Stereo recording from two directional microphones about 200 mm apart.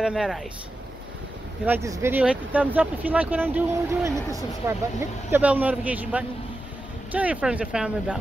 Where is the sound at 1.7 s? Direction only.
15° right (ahead or behind).